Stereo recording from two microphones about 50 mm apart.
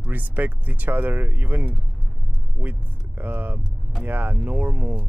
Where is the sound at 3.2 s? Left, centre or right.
Right.